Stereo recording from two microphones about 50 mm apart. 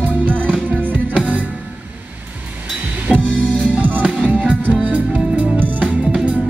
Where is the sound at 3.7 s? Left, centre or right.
Right.